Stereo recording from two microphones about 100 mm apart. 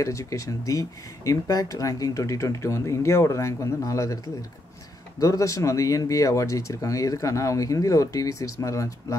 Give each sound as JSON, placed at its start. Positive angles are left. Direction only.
{"t": 0.0, "sound": "speech", "side_deg": 30}
{"t": 5.2, "sound": "speech", "side_deg": 35}